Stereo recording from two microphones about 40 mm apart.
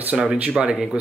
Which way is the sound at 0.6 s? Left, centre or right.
Centre.